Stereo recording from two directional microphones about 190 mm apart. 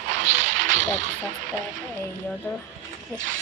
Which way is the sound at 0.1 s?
40° right (ahead or behind).